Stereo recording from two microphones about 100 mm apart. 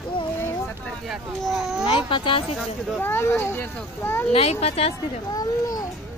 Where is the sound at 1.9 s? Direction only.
60° left (ahead or behind).